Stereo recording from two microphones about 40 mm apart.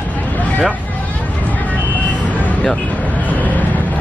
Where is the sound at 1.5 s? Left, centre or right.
Left.